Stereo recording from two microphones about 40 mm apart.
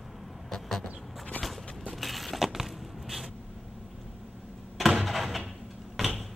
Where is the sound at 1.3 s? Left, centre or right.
Left.